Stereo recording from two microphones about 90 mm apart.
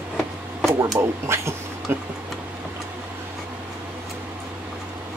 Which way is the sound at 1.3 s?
30° right (ahead or behind).